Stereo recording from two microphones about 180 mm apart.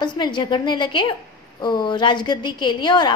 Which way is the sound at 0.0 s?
25° left (ahead or behind).